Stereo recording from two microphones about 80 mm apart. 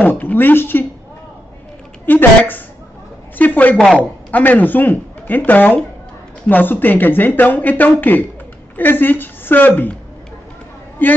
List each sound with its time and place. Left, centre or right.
0.0 s speech: left
2.0 s a woman's voice: left
11.0 s speech: left